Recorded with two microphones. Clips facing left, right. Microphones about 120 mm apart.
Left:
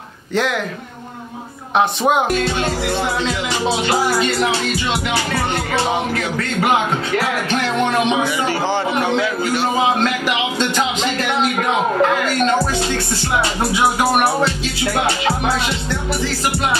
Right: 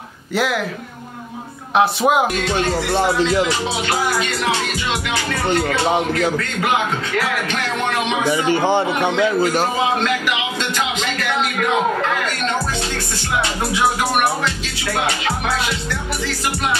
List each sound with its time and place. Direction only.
0.3 s speech: 5° right (ahead or behind)
1.8 s music: 5° right (ahead or behind)
8.5 s speech: 20° right (ahead or behind)
9.4 s a man's voice: 40° right (ahead or behind)
12.9 s music: 30° left (ahead or behind)
15.0 s music: 30° left (ahead or behind)